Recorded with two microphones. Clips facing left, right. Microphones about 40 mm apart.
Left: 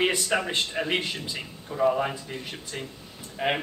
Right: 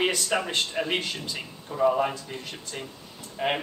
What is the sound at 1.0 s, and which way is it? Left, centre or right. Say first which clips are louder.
Speech: left 1 dB; centre.